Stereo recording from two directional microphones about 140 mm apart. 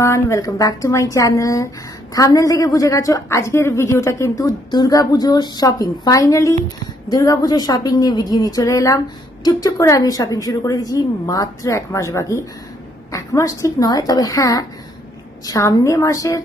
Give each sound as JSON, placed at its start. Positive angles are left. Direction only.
{"t": 0.0, "sound": "a woman's voice", "side_deg": 20}